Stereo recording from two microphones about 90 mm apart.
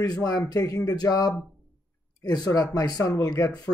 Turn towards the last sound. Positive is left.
turn(degrees=45)  # may be behind; listen again after turning